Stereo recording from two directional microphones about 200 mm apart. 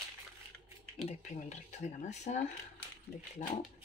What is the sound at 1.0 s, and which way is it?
Speech, 35° left (ahead or behind).